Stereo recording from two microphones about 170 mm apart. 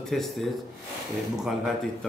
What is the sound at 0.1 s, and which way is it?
Speech, centre (ahead or behind).